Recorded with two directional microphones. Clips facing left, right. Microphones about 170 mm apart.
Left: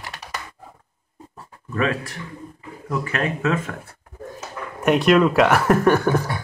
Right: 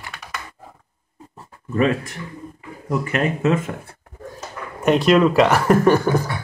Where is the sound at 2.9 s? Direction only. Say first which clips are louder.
Right 3 dB; 25° right (ahead or behind).